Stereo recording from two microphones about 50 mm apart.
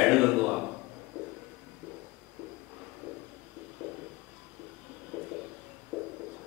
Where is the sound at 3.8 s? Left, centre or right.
Centre.